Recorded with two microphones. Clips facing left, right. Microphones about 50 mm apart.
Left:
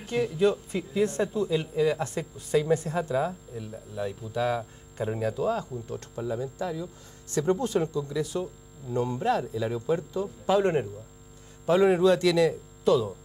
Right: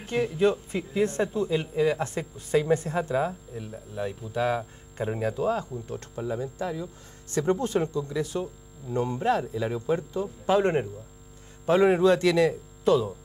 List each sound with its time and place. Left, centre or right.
0.0 s a man's voice: right